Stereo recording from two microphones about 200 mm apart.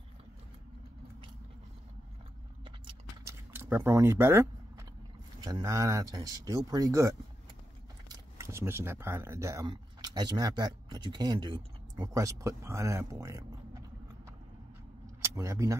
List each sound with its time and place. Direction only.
2.6 s a sound: 25° right (ahead or behind)
3.5 s speech: 10° right (ahead or behind)
15.2 s speech: 15° right (ahead or behind)